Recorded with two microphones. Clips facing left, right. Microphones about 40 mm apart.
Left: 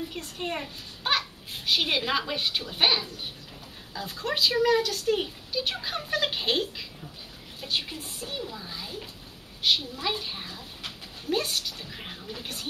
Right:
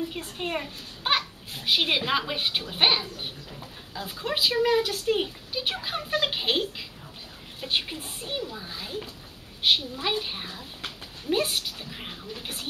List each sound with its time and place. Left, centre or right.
0.1 s speech: centre
7.6 s speech: right
8.4 s speech: centre